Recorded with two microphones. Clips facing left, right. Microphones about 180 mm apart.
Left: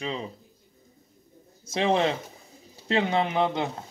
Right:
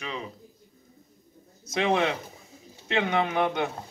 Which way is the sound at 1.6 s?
30° left (ahead or behind).